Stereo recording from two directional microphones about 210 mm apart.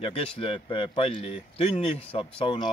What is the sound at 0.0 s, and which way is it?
Speech, 25° left (ahead or behind).